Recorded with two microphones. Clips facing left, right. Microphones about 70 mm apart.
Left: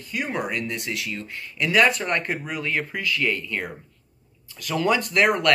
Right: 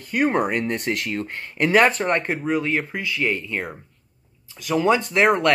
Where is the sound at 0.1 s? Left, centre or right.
Right.